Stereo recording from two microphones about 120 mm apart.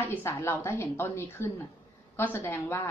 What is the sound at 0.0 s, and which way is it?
A woman's voice, 20° left (ahead or behind).